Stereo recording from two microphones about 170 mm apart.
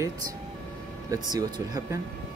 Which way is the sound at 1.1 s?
20° right (ahead or behind).